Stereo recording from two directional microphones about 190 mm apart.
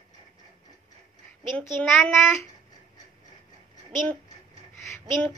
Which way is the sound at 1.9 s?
Centre (ahead or behind).